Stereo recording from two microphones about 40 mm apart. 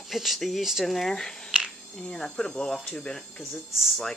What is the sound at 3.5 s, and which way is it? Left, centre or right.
Speech, centre.